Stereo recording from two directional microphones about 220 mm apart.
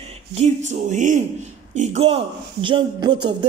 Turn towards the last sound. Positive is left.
turn(degrees=-20)  # may be behind; listen again after turning